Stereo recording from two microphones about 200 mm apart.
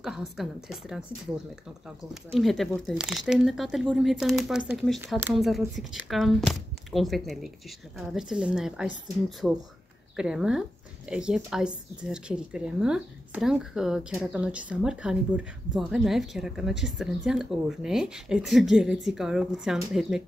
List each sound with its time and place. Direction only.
0.4 s speech: centre (ahead or behind)
2.3 s speech: centre (ahead or behind)
5.3 s speech: centre (ahead or behind)